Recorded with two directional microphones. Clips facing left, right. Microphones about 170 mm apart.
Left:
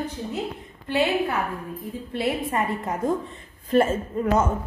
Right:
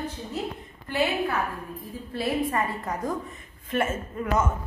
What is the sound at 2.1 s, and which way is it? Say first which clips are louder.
A woman's voice: left 1 dB; 25° left (ahead or behind).